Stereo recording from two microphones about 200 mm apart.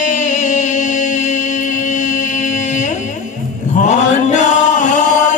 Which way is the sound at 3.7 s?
35° left (ahead or behind).